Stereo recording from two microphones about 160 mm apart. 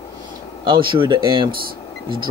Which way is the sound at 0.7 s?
30° right (ahead or behind).